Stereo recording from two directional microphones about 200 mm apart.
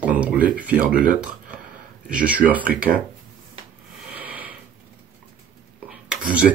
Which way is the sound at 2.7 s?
45° right (ahead or behind).